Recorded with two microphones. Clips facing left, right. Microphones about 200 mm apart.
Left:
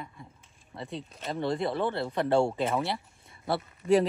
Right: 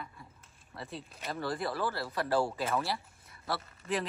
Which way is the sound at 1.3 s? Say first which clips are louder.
Left 6 dB; 25° left (ahead or behind).